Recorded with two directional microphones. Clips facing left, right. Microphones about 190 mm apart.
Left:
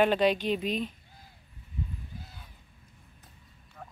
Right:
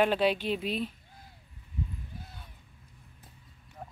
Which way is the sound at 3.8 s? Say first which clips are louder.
Right 2 dB; 25° right (ahead or behind).